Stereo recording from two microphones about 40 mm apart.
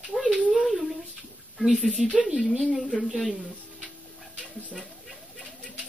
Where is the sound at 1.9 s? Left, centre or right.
Centre.